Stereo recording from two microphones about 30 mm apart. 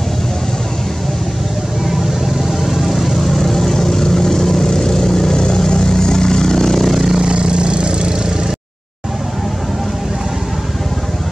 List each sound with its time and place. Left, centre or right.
2.6 s vehicle: centre
3.5 s vehicle: centre
6.9 s vehicle: centre
7.2 s vehicle: right